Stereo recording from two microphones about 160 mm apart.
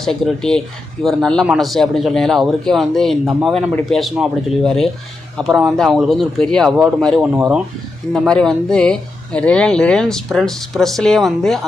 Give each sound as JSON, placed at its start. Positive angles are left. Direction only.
{"t": 0.0, "sound": "speech", "side_deg": 5}
{"t": 8.3, "sound": "speech", "side_deg": 5}